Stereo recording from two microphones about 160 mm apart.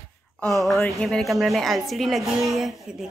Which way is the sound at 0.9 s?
Centre (ahead or behind).